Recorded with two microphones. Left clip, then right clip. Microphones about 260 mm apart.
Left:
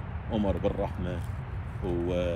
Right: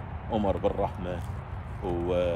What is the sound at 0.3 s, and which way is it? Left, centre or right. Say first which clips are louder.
Speech: right 2 dB; centre.